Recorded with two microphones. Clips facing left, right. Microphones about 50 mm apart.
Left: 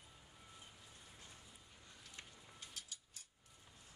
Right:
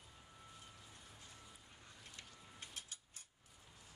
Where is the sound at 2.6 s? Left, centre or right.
Right.